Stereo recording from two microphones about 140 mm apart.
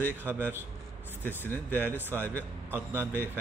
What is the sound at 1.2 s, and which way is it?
Speech, 15° left (ahead or behind).